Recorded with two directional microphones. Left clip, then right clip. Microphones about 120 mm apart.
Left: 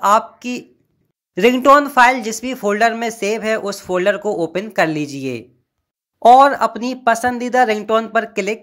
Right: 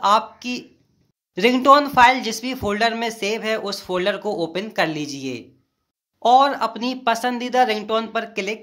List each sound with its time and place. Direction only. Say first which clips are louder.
0.0 s a woman's voice: left 3 dB; 35° left (ahead or behind)